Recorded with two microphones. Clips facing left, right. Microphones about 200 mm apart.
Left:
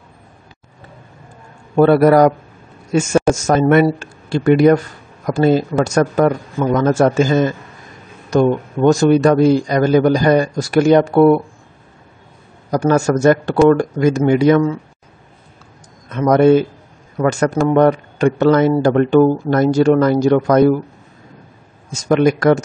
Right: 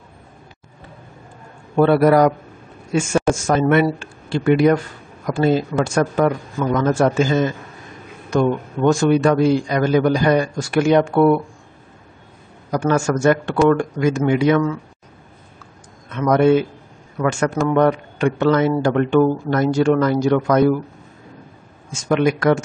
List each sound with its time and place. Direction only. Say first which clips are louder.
1.8 s a man's voice: left 3 dB; 45° left (ahead or behind)
8.9 s speech: left 4 dB; 40° left (ahead or behind)
12.7 s speech: left 4 dB; 40° left (ahead or behind)
16.1 s speech: left 4 dB; 40° left (ahead or behind)
21.9 s speech: left 4 dB; 40° left (ahead or behind)